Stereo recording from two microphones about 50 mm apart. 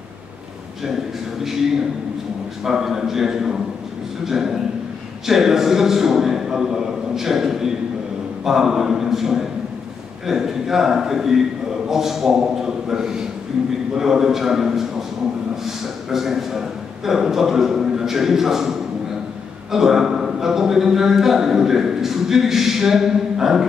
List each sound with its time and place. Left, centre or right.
2.6 s a man's voice: centre